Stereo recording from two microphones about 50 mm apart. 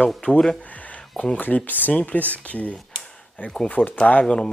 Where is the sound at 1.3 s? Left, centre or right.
Left.